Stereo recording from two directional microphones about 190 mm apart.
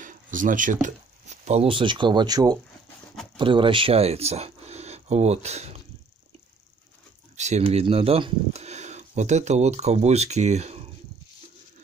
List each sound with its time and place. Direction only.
0.0 s speech: 45° right (ahead or behind)
7.3 s speech: 35° right (ahead or behind)